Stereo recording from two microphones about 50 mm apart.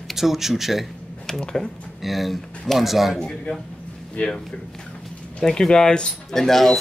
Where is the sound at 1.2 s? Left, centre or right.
Centre.